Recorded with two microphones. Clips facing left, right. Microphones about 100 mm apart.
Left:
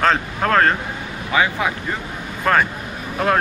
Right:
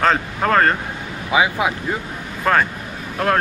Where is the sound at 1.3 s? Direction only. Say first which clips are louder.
Right 1 dB; 10° right (ahead or behind).